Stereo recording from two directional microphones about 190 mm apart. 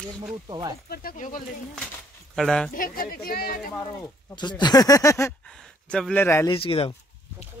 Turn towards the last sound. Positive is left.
turn(degrees=30)  # may be behind; listen again after turning